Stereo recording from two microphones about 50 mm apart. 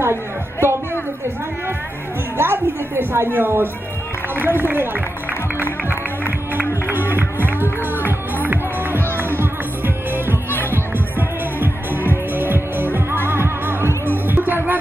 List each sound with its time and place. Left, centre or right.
0.0 s music: right
2.3 s speech: right
5.6 s music: right